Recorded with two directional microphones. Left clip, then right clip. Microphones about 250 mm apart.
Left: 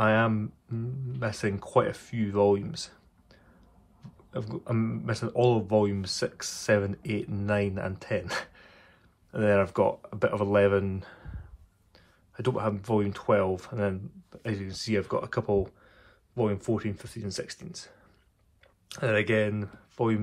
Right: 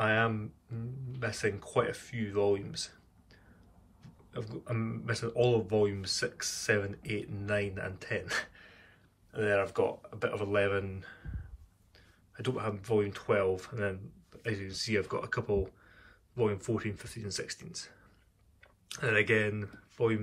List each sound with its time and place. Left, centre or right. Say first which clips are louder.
0.0 s a sound: left 5 dB; centre
1.2 s speech: left 2 dB; centre
12.4 s speech: left 6 dB; centre